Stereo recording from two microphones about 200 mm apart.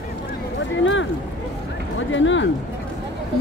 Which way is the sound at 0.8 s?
70° left (ahead or behind).